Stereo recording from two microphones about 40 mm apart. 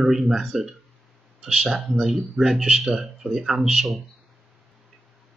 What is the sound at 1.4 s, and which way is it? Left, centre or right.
Speech, centre.